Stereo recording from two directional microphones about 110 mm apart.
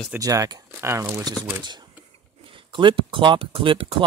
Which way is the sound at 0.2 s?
35° right (ahead or behind).